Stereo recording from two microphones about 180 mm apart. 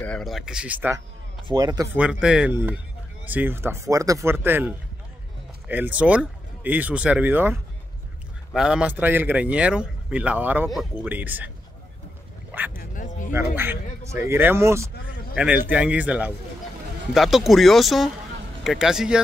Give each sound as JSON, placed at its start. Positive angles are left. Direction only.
{"t": 0.0, "sound": "speech", "side_deg": 5}
{"t": 1.5, "sound": "speech", "side_deg": -20}
{"t": 2.0, "sound": "speech", "side_deg": -5}
{"t": 8.5, "sound": "speech", "side_deg": -5}
{"t": 12.4, "sound": "a sound", "side_deg": -10}
{"t": 12.7, "sound": "bow-wow", "side_deg": 45}
{"t": 14.2, "sound": "speech", "side_deg": -15}